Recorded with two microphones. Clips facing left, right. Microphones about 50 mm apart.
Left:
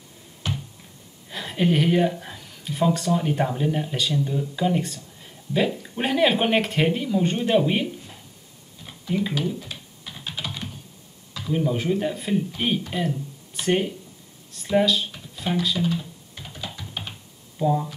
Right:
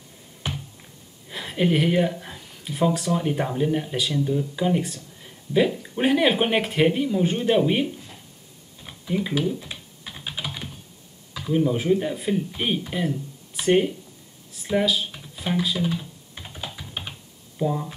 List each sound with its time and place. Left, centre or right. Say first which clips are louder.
0.4 s a sound: left 1 dB; centre
1.3 s speech: even; centre
9.7 s computer keyboard: even; centre
11.3 s speech: right 2 dB; centre
14.5 s a sound: left 2 dB; centre
17.6 s speech: left 3 dB; centre